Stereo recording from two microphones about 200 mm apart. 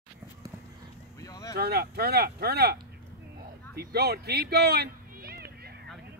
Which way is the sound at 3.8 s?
50° right (ahead or behind).